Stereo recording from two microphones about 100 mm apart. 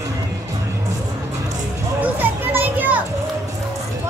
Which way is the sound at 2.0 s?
20° right (ahead or behind).